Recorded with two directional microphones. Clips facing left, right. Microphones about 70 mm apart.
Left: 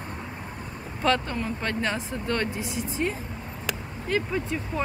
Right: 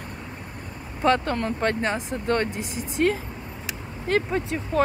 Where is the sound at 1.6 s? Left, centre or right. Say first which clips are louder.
Right 4 dB; right.